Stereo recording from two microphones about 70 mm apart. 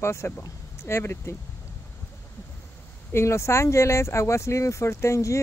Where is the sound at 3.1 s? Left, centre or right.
Left.